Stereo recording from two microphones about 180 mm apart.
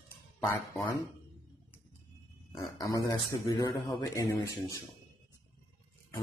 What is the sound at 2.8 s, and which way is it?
A man's voice, 20° left (ahead or behind).